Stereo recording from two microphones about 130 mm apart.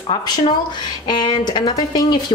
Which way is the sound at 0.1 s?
35° left (ahead or behind).